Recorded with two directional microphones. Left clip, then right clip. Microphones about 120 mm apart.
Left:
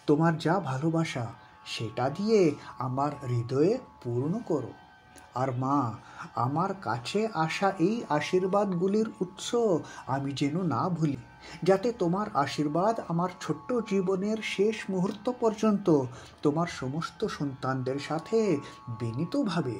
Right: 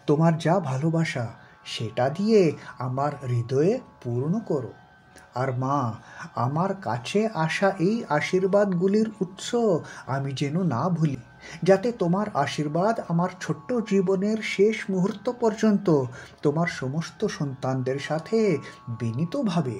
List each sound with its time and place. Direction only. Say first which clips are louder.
0.0 s speech: right 3 dB; 15° left (ahead or behind); by 5.7 s 35° left (ahead or behind)
5.7 s speech: right 2 dB; 20° left (ahead or behind)
8.8 s speech: right 4 dB; 15° left (ahead or behind)
12.7 s speech: right 3 dB; 35° left (ahead or behind)
13.7 s speech: right 5 dB; 20° left (ahead or behind)
18.3 s speech: right 3 dB; 35° left (ahead or behind); by 19.6 s 15° left (ahead or behind)